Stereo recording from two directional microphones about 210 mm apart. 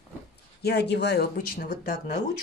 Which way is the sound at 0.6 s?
55° left (ahead or behind).